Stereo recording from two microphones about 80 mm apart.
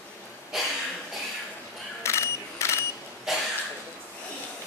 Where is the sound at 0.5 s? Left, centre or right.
Centre.